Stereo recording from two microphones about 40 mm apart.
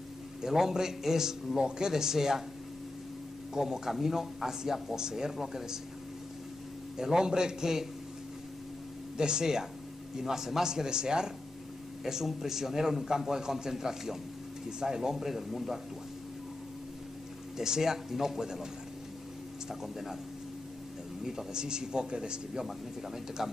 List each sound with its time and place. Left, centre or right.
0.4 s a man's voice: centre
3.5 s a man's voice: centre
7.0 s a man's voice: centre
9.1 s a man's voice: centre
17.6 s a man's voice: centre
19.7 s a man's voice: centre
21.2 s a man's voice: centre